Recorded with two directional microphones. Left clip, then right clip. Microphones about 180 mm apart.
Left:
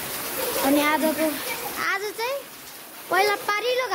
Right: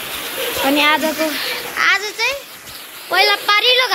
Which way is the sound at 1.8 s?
10° left (ahead or behind).